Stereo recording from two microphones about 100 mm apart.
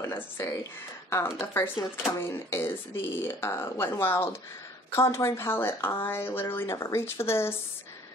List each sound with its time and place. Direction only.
0.0 s speech: 30° left (ahead or behind)